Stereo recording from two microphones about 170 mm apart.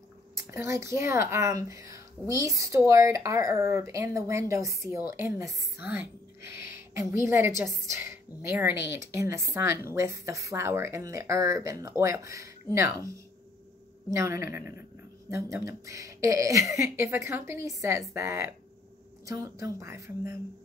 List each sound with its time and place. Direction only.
0.5 s speech: 15° right (ahead or behind)
14.1 s a woman's voice: 15° right (ahead or behind)